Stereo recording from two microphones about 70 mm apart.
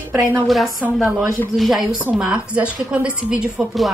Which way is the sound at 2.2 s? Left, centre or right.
Centre.